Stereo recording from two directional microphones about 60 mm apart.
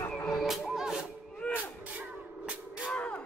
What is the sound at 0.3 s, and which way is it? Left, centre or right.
Music, centre.